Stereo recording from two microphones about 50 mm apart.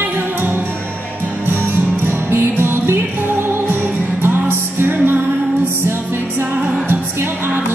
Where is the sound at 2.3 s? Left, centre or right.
Right.